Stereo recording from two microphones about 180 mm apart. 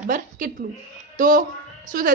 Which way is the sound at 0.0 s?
50° right (ahead or behind).